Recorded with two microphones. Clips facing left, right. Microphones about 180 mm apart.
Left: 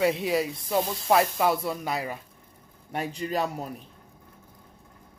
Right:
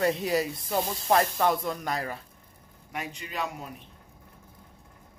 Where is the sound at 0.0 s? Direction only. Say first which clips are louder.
Left 1 dB; centre (ahead or behind).